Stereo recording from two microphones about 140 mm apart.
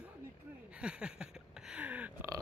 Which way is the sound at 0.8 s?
5° right (ahead or behind).